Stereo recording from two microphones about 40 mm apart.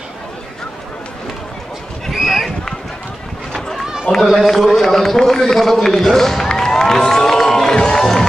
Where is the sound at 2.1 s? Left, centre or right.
Centre.